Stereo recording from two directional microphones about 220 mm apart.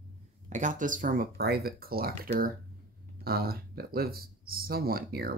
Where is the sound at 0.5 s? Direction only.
35° right (ahead or behind).